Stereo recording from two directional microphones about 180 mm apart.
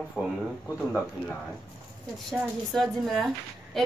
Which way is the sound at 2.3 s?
Centre (ahead or behind).